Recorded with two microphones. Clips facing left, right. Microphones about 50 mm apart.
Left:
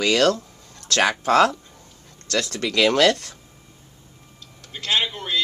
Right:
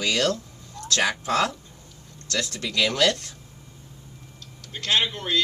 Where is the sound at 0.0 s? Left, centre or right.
Left.